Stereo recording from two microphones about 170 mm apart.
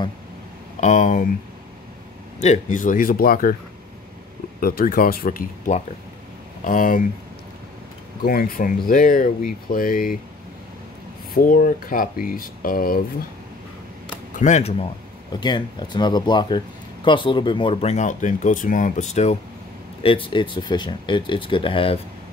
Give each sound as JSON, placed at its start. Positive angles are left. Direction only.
{"t": 0.7, "sound": "speech", "side_deg": 45}
{"t": 2.4, "sound": "speech", "side_deg": 45}
{"t": 4.6, "sound": "speech", "side_deg": 60}
{"t": 8.2, "sound": "speech", "side_deg": 60}
{"t": 11.3, "sound": "speech", "side_deg": 55}
{"t": 14.3, "sound": "speech", "side_deg": 45}
{"t": 15.4, "sound": "speech", "side_deg": 25}
{"t": 20.0, "sound": "speech", "side_deg": 30}